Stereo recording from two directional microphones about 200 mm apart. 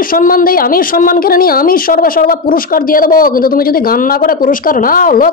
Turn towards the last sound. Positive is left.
turn(degrees=45)  # may be behind; listen again after turning